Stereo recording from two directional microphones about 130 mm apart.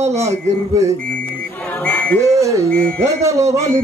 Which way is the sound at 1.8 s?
10° left (ahead or behind).